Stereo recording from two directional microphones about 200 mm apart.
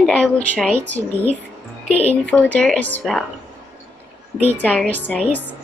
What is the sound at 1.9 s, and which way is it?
Speech, 30° left (ahead or behind).